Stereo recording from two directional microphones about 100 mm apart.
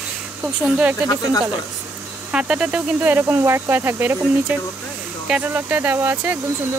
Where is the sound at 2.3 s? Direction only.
10° right (ahead or behind).